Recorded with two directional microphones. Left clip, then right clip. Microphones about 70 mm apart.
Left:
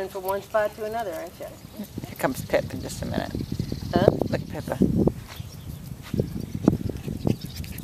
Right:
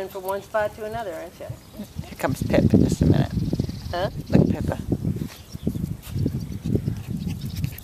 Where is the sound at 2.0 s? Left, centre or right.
Centre.